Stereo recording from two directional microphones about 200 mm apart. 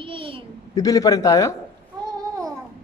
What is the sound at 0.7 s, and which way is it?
Speech, 20° left (ahead or behind).